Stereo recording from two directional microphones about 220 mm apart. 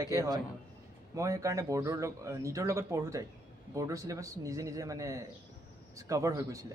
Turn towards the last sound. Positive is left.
turn(degrees=-15)  # may be behind; listen again after turning